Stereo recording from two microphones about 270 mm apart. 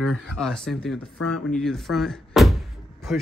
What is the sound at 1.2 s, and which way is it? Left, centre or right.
Speech, left.